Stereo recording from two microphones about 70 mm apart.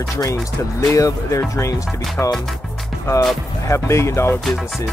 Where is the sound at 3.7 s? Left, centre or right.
Left.